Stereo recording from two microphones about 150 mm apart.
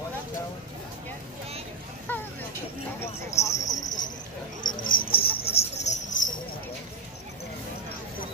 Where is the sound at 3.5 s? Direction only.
55° left (ahead or behind).